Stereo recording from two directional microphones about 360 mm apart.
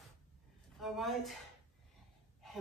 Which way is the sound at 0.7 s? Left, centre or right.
Centre.